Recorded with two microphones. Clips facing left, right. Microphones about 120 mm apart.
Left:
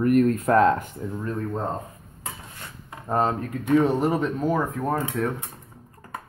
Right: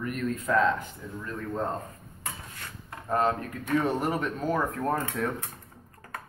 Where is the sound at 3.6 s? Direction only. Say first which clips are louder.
Left 7 dB; 20° left (ahead or behind); by 5.4 s 5° left (ahead or behind).